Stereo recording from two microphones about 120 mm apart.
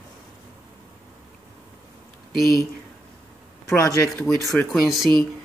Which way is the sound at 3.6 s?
25° left (ahead or behind).